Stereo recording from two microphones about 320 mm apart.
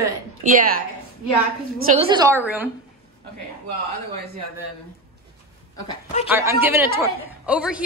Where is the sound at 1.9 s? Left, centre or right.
Centre.